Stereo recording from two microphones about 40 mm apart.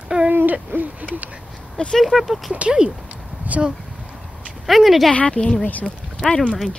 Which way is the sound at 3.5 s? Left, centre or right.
Right.